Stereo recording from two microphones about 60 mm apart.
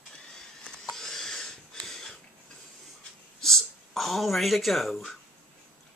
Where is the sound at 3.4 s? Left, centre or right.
Centre.